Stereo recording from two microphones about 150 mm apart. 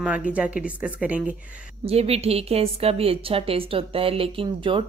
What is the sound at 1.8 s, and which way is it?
A woman's voice, 45° right (ahead or behind).